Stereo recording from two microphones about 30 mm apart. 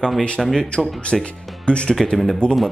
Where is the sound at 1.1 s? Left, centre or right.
Centre.